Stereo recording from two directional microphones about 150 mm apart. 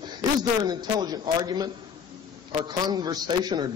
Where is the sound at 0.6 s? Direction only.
25° right (ahead or behind).